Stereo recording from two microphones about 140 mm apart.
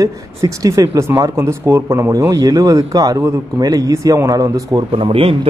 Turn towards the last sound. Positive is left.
turn(degrees=-40)  # may be behind; listen again after turning